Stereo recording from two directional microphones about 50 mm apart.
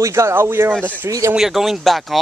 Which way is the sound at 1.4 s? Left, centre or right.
Centre.